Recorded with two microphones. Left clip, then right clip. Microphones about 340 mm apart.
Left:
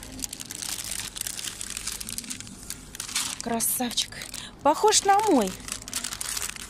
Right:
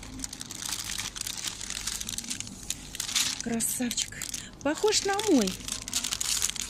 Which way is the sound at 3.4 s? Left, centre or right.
Centre.